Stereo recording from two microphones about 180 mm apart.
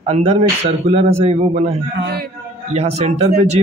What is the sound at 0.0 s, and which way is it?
Speech, 35° right (ahead or behind).